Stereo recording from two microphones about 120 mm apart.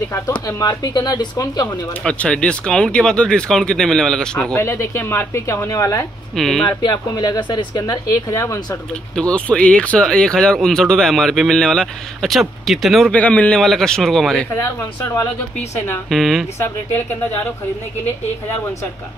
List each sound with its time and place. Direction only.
0.5 s speech: 30° left (ahead or behind)
2.0 s speech: 10° left (ahead or behind)
4.6 s speech: 20° left (ahead or behind)
6.3 s speech: centre (ahead or behind)
6.8 s speech: 35° left (ahead or behind)
9.1 s speech: 10° left (ahead or behind)
13.1 s speech: 10° left (ahead or behind)
14.5 s speech: 20° left (ahead or behind)
16.1 s speech: centre (ahead or behind)
16.5 s speech: 20° left (ahead or behind)